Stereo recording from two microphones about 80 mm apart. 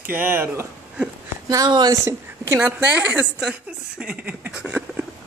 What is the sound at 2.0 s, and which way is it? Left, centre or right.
Speech, right.